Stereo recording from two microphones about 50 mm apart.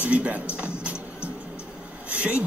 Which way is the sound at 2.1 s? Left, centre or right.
Right.